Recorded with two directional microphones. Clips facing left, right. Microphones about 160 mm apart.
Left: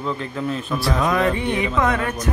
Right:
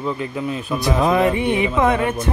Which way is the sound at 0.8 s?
25° right (ahead or behind).